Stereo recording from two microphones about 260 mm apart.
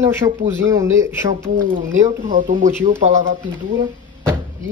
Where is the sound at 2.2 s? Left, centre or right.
Right.